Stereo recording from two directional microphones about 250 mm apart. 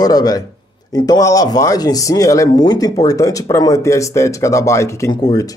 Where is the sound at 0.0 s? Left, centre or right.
Centre.